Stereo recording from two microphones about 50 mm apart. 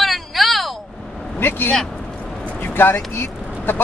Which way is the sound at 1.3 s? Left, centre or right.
Left.